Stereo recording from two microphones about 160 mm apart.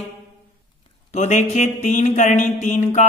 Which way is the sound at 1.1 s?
45° left (ahead or behind).